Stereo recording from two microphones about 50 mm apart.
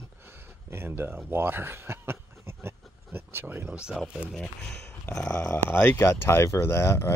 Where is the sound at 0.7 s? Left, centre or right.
Right.